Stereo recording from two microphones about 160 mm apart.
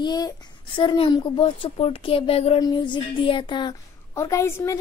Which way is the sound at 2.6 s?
25° left (ahead or behind).